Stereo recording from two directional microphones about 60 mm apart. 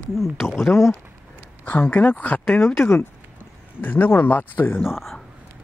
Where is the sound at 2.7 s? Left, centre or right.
Left.